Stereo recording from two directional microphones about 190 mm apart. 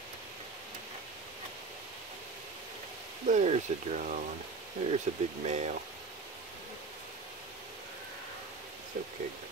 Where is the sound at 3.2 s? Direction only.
35° right (ahead or behind).